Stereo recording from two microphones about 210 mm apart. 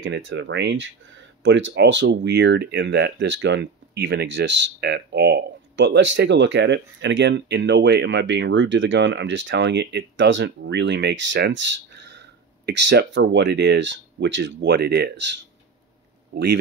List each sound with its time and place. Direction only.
0.0 s speech: 60° right (ahead or behind)